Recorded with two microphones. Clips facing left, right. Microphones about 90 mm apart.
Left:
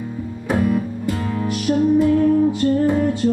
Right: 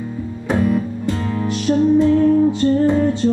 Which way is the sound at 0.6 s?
30° right (ahead or behind).